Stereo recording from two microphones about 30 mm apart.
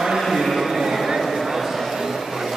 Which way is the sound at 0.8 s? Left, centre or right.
Centre.